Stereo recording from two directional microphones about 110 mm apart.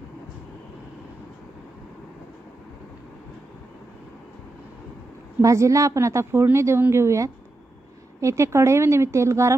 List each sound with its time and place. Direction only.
5.4 s a woman's voice: 30° right (ahead or behind)